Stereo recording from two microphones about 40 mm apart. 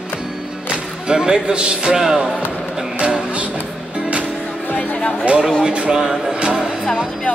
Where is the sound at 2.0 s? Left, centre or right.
Centre.